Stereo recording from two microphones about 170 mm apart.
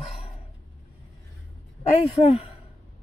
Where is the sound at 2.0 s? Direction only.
35° left (ahead or behind).